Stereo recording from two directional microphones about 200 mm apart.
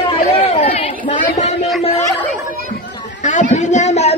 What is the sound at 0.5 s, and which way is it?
Chatter, 30° left (ahead or behind).